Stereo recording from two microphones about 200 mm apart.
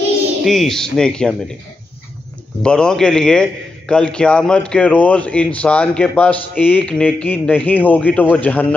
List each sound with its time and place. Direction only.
0.4 s a man's voice: centre (ahead or behind)
2.6 s a man's voice: 5° left (ahead or behind)